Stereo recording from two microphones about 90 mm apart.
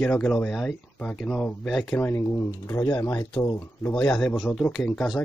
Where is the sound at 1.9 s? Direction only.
30° left (ahead or behind).